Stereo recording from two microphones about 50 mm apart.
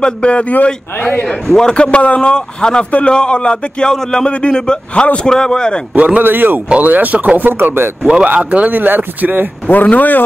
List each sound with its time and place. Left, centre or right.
0.0 s speech: left
5.9 s speech: right
6.2 s speech: right
8.0 s speech: centre
8.5 s speech: right
9.7 s speech: left